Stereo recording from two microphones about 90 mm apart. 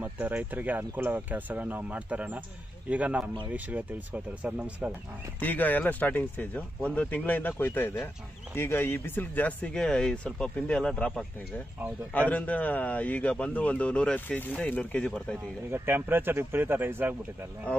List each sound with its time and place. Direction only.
0.0 s speech: 20° right (ahead or behind)
5.4 s a man's voice: 20° left (ahead or behind)
12.1 s a man's voice: 20° left (ahead or behind)
15.7 s speech: 25° right (ahead or behind)